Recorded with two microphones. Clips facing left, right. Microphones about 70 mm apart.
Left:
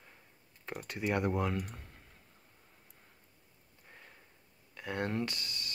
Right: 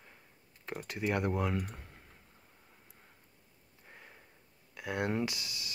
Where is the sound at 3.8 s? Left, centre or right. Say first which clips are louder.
Right 2 dB; centre.